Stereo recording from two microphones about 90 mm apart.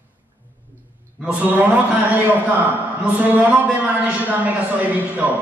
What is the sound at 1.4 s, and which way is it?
A man's voice, 20° right (ahead or behind).